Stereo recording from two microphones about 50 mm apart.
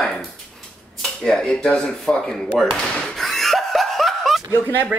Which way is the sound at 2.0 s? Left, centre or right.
Centre.